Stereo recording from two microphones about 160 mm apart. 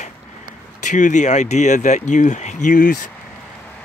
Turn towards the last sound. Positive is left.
turn(degrees=55)  # may be behind; listen again after turning